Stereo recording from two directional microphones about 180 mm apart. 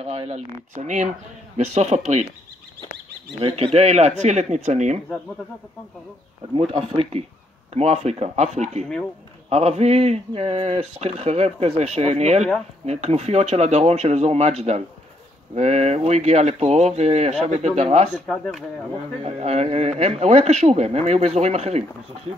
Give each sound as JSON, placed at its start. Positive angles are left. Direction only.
{"t": 0.0, "sound": "speech", "side_deg": -35}
{"t": 3.3, "sound": "speech", "side_deg": -30}
{"t": 6.5, "sound": "speech", "side_deg": -30}
{"t": 18.1, "sound": "speech", "side_deg": 0}
{"t": 19.2, "sound": "speech", "side_deg": -35}